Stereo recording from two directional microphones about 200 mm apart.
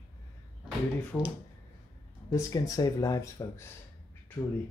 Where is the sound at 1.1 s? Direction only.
10° left (ahead or behind).